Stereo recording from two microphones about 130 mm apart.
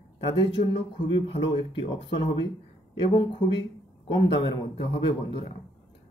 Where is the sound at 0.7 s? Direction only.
45° left (ahead or behind).